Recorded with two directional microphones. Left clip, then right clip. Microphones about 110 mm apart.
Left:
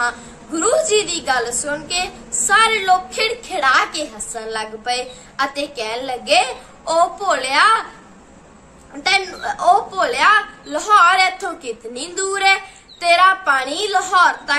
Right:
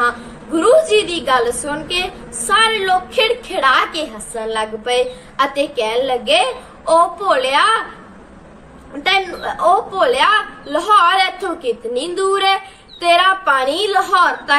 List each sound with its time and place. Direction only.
0.6 s a woman's voice: 35° left (ahead or behind)
9.6 s a woman's voice: 30° left (ahead or behind)